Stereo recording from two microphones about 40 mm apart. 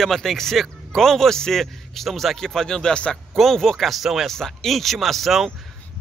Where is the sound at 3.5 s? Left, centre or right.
Centre.